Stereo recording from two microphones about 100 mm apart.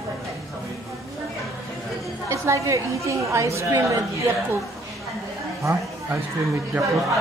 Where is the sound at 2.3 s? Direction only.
30° right (ahead or behind).